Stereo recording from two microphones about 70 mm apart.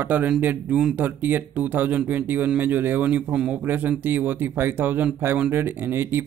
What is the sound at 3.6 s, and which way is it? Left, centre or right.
Speech, right.